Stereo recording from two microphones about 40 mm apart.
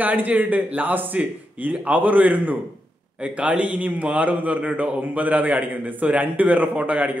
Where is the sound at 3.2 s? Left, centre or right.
Right.